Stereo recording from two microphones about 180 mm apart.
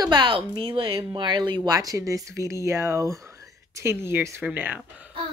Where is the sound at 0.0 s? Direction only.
25° right (ahead or behind).